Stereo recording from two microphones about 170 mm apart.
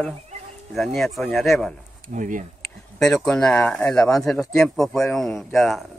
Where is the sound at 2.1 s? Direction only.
50° right (ahead or behind).